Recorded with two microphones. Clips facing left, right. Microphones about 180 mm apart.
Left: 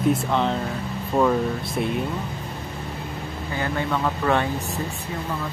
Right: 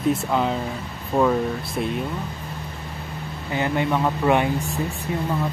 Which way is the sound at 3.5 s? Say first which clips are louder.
Right 4 dB; 20° right (ahead or behind).